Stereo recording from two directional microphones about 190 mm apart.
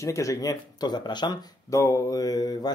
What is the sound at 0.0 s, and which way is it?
Speech, 15° left (ahead or behind).